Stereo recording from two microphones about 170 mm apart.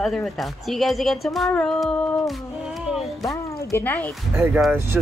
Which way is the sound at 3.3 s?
15° left (ahead or behind).